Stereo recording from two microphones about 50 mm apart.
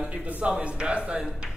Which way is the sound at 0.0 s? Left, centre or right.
Right.